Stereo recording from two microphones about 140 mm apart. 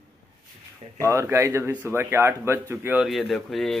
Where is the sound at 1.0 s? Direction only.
20° right (ahead or behind).